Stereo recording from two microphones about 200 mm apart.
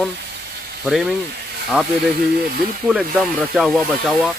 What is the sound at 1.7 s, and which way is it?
Speech, 5° right (ahead or behind).